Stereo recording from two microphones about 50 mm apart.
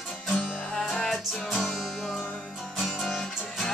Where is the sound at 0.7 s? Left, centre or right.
Centre.